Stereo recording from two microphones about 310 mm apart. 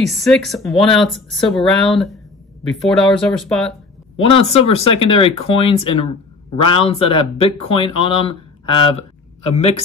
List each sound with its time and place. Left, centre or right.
0.0 s speech: centre
4.2 s speech: centre